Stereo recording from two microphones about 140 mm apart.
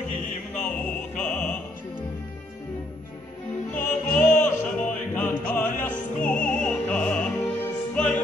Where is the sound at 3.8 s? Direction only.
70° left (ahead or behind).